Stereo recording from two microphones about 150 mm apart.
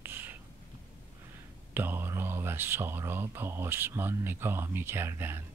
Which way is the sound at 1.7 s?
15° right (ahead or behind).